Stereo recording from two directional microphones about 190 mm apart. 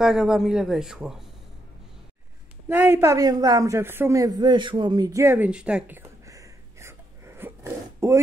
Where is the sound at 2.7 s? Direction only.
10° right (ahead or behind).